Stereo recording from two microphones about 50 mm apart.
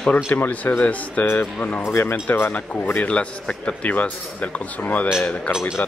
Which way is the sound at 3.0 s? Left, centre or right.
Left.